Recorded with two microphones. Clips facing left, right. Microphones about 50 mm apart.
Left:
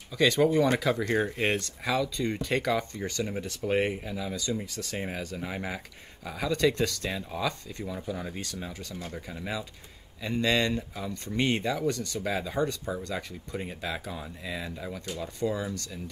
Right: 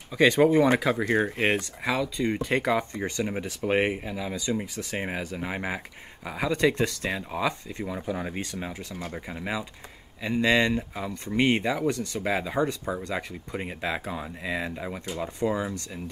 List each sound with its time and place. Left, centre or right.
0.1 s speech: right